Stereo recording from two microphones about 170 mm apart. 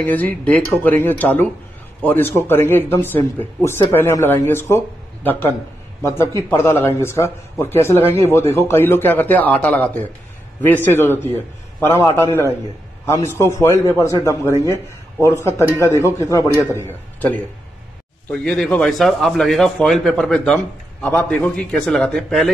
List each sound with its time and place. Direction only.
0.0 s speech: 10° left (ahead or behind)